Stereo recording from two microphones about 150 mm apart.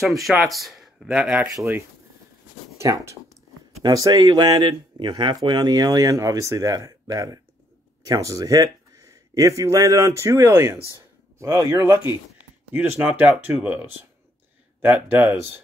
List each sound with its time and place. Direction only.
0.0 s speech: centre (ahead or behind)
1.6 s speech: 15° right (ahead or behind)
12.7 s speech: 10° right (ahead or behind)